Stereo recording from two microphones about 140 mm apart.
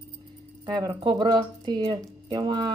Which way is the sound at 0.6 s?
35° right (ahead or behind).